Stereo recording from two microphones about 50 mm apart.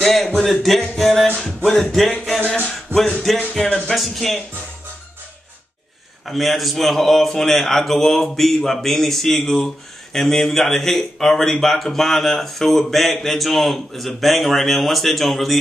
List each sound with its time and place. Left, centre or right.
0.0 s a man's voice: centre
1.2 s music: centre
1.7 s a man's voice: centre
2.0 s music: left
2.4 s a sound: left
3.5 s music: centre
3.9 s a man's voice: centre
6.2 s a man's voice: centre